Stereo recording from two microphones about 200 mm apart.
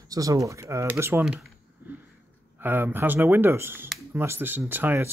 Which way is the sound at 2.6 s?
10° right (ahead or behind).